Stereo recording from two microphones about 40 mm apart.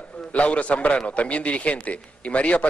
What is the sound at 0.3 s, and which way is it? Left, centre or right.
A man's voice, left.